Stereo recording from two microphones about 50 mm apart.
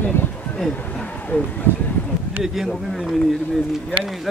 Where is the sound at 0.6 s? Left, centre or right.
Centre.